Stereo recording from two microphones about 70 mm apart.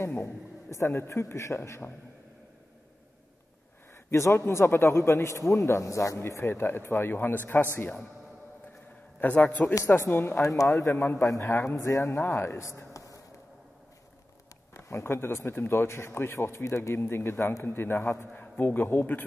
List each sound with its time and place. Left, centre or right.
0.2 s a man's voice: left
3.9 s a man's voice: left
9.2 s a man's voice: left
9.9 s a man's voice: left
10.4 s a man's voice: left
11.2 s a man's voice: left
14.7 s a man's voice: left